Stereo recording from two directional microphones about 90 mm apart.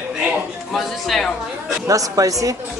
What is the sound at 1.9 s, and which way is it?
Speech, 40° right (ahead or behind).